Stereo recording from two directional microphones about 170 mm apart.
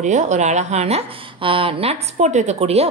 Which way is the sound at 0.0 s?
45° right (ahead or behind).